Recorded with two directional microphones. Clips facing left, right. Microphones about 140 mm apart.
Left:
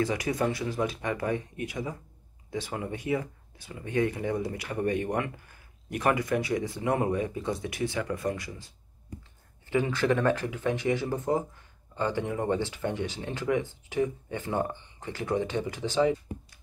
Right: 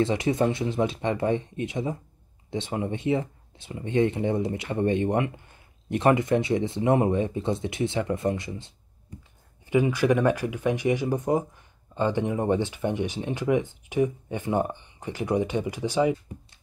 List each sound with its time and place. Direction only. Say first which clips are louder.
0.0 s speech: right 4 dB; 25° right (ahead or behind)